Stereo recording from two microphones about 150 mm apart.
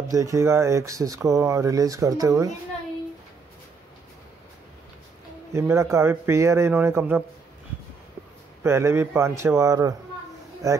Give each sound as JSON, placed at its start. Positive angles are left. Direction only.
{"t": 0.1, "sound": "speech", "side_deg": -20}
{"t": 5.5, "sound": "speech", "side_deg": -15}
{"t": 8.6, "sound": "speech", "side_deg": -15}